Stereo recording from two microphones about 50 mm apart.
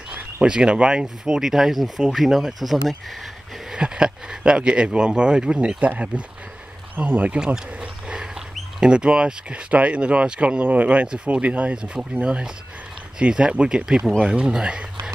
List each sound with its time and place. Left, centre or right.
0.1 s speech: right
1.0 s speech: centre
3.7 s speech: centre
7.3 s speech: centre
7.7 s a sound: right
8.7 s speech: centre
10.6 s speech: right